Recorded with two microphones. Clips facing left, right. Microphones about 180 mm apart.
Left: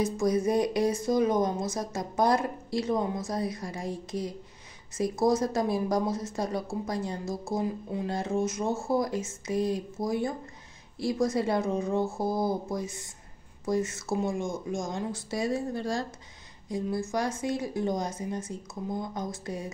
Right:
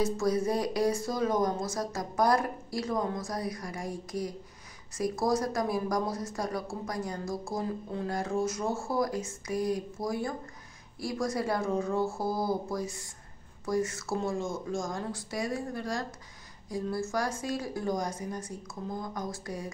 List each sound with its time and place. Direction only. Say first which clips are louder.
0.0 s speech: left 2 dB; 20° left (ahead or behind)